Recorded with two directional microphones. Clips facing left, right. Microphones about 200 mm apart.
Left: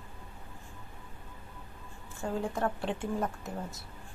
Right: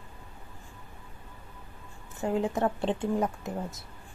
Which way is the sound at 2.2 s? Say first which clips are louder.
Right 5 dB; 20° right (ahead or behind).